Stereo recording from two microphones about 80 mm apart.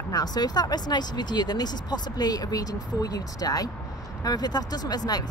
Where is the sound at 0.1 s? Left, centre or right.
Left.